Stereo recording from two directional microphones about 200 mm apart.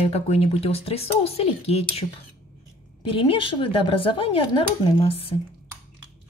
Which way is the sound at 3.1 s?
25° left (ahead or behind).